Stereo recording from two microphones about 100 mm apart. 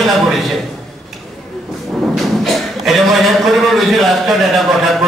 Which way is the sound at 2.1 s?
Centre (ahead or behind).